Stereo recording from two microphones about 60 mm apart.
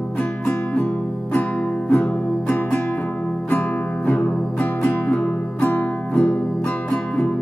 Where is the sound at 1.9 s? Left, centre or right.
Centre.